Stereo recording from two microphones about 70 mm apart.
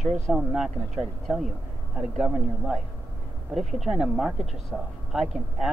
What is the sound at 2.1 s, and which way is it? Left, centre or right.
Speech, centre.